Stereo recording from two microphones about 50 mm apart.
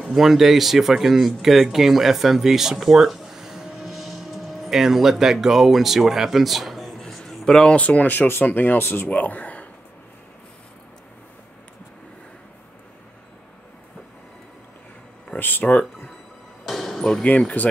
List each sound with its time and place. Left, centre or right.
0.1 s speech: centre
7.7 s speech: left
8.7 s speech: left
9.1 s speech: left
15.3 s speech: left
16.6 s basketball bounce: centre
17.6 s speech: left